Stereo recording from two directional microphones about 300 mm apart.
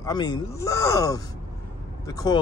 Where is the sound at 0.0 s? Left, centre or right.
Centre.